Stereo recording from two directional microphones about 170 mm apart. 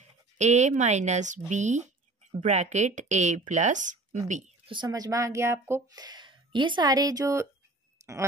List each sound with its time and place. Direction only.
0.4 s speech: 45° right (ahead or behind)
4.6 s speech: 25° right (ahead or behind)
8.0 s a sound: 20° right (ahead or behind)